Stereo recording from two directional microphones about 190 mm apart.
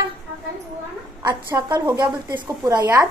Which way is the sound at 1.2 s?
20° right (ahead or behind).